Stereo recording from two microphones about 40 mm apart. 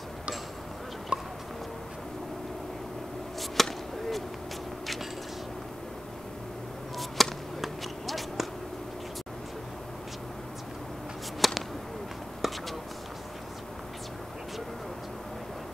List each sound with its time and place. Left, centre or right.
1.1 s tick-tock: right
3.6 s chop: centre
7.0 s basketball bounce: centre
11.4 s whip: centre
12.4 s a sound: centre